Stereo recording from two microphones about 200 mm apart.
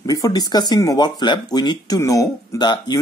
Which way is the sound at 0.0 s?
15° left (ahead or behind).